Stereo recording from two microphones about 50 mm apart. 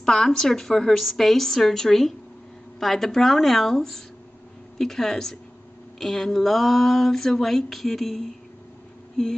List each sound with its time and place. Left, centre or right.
0.0 s speech: centre